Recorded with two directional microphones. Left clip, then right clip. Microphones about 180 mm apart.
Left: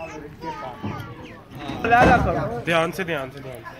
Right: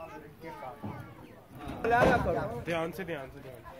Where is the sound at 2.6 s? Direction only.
25° left (ahead or behind).